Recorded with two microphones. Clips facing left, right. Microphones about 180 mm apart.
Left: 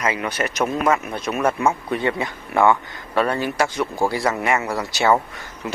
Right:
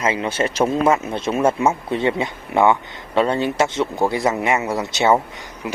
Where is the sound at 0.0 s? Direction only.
25° right (ahead or behind).